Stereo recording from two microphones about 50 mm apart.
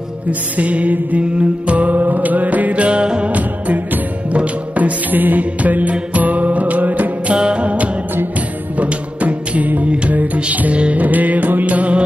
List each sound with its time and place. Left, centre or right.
0.3 s music: right
7.3 s music: right